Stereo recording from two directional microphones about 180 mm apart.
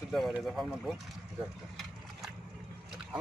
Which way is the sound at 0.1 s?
Centre (ahead or behind).